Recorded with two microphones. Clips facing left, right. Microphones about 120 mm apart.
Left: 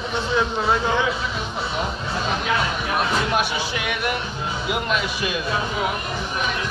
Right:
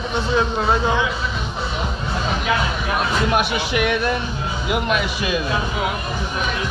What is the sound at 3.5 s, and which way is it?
Speech, 65° right (ahead or behind).